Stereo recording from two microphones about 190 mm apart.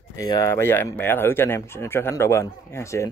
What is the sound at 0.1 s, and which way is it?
A man's voice, 15° left (ahead or behind).